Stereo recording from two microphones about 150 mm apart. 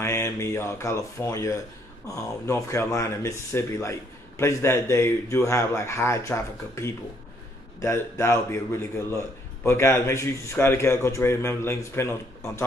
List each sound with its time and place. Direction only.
0.0 s a man's voice: 20° left (ahead or behind)